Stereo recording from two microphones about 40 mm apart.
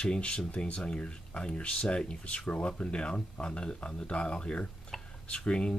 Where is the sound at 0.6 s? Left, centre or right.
Left.